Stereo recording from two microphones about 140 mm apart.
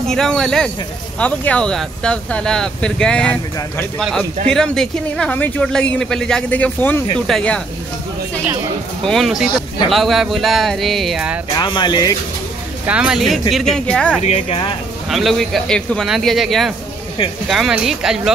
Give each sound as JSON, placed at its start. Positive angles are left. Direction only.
{"t": 0.0, "sound": "speech", "side_deg": 5}
{"t": 4.5, "sound": "speech", "side_deg": 5}
{"t": 9.0, "sound": "speech", "side_deg": 0}
{"t": 11.5, "sound": "speech", "side_deg": 35}
{"t": 12.8, "sound": "speech", "side_deg": -10}
{"t": 14.2, "sound": "speech", "side_deg": 50}
{"t": 15.0, "sound": "speech", "side_deg": 0}